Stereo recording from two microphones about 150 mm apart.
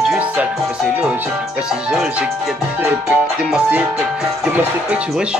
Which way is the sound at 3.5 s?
10° right (ahead or behind).